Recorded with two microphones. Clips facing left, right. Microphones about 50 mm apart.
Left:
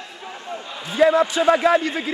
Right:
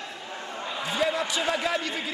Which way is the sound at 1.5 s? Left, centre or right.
Left.